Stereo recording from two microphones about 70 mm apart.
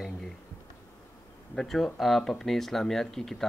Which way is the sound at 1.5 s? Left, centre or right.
Centre.